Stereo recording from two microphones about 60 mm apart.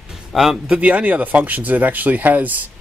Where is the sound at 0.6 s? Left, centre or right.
Right.